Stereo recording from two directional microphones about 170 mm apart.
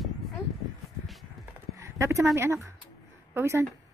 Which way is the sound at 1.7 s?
15° right (ahead or behind).